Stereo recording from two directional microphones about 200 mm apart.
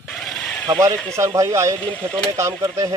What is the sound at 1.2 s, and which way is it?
Speech, 15° right (ahead or behind).